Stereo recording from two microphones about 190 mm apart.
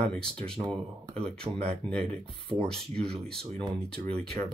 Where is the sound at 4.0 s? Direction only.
55° right (ahead or behind).